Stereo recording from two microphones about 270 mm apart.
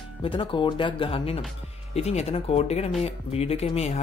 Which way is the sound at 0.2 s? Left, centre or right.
Centre.